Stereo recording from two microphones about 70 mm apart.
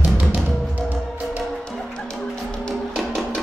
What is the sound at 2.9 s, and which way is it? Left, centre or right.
Music, centre.